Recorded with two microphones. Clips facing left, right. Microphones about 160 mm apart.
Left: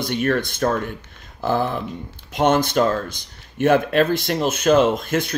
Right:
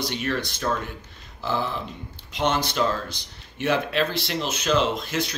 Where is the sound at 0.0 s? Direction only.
50° left (ahead or behind).